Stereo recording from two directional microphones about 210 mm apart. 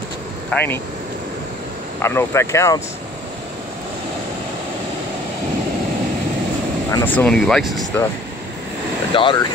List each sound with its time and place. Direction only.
0.5 s speech: 10° left (ahead or behind)
2.0 s speech: 10° left (ahead or behind)
6.9 s speech: 10° left (ahead or behind)
9.1 s speech: 25° left (ahead or behind)